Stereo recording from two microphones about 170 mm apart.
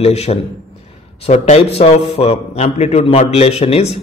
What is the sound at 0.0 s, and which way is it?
Speech, 40° left (ahead or behind).